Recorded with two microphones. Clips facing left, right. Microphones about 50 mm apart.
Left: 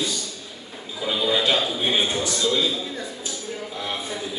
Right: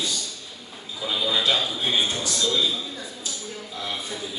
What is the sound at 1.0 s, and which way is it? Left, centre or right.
A man's voice, centre.